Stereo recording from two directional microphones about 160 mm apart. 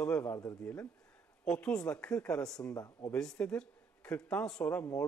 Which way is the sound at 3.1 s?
5° left (ahead or behind).